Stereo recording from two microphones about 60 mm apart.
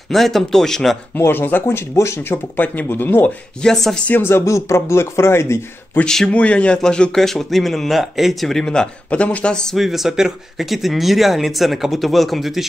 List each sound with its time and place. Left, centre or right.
0.1 s speech: centre
1.1 s speech: left
2.6 s speech: left
3.6 s a man's voice: centre
4.1 s speech: left
4.5 s speech: left
6.0 s a man's voice: centre
6.3 s a man's voice: left
9.1 s a man's voice: left
9.8 s speech: centre